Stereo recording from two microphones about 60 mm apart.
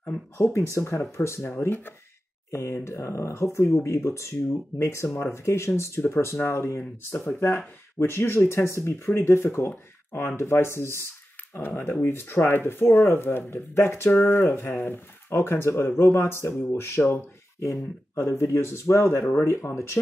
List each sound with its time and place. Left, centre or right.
0.0 s speech: left
1.7 s speech: left
2.5 s speech: left
11.5 s speech: left